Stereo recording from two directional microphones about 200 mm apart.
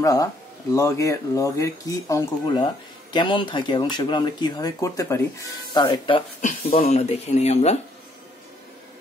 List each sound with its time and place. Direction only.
0.0 s speech: 15° left (ahead or behind); by 7.8 s 35° left (ahead or behind)